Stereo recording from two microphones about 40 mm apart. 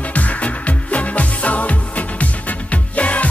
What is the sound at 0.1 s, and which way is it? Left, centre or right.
Music, left.